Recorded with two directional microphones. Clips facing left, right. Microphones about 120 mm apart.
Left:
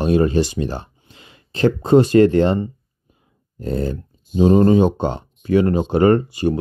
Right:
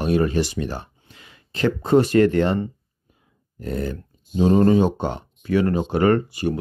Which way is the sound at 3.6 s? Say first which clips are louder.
Left 4 dB; 30° left (ahead or behind).